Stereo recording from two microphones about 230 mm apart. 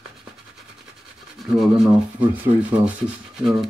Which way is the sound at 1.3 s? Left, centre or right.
Centre.